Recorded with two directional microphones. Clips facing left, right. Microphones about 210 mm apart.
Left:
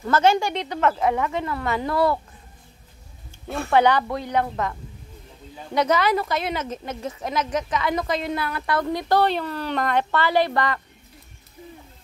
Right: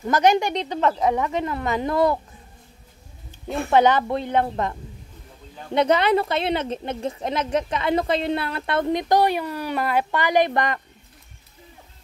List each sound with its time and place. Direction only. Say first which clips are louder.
0.0 s a woman's voice: right 1 dB; 15° right (ahead or behind)
3.4 s a woman's voice: right 1 dB; 20° right (ahead or behind)
5.8 s a woman's voice: right 2 dB; 25° right (ahead or behind)